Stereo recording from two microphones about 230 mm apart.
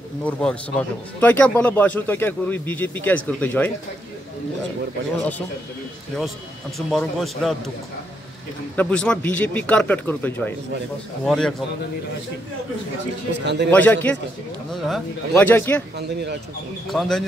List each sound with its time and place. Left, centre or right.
0.2 s a man's voice: centre
6.9 s speech: centre
8.7 s a man's voice: centre
13.3 s a man's voice: right
13.7 s a man's voice: centre
16.9 s speech: centre